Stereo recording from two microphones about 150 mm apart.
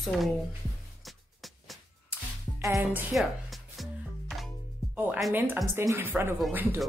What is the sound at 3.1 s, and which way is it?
Speech, 5° right (ahead or behind).